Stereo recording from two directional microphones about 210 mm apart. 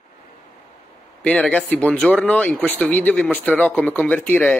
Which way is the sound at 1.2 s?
5° left (ahead or behind).